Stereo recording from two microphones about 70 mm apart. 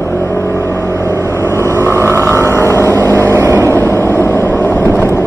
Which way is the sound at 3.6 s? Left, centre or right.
Left.